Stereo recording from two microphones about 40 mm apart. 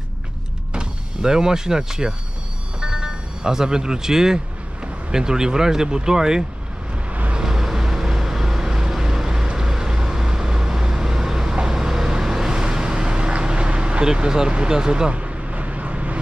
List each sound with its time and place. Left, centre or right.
0.7 s speech: centre
2.8 s a sound: centre
5.1 s speech: centre
7.1 s vehicle: right
7.4 s vehicle: centre
14.5 s speech: right
15.1 s vehicle: right